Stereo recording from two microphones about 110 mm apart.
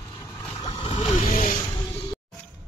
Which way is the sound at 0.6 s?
40° left (ahead or behind).